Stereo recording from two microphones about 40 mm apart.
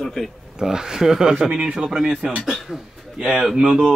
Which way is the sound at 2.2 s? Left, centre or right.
Right.